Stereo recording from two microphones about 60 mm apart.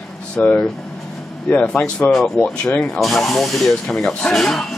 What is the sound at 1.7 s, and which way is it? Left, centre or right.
Speech, centre.